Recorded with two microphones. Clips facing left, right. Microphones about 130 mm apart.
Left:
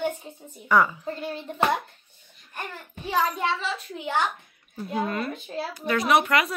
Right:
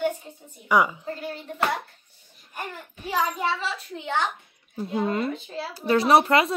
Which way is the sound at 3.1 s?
5° right (ahead or behind).